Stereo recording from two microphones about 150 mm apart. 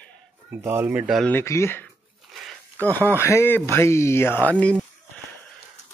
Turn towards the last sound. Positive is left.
turn(degrees=10)  # may be behind; listen again after turning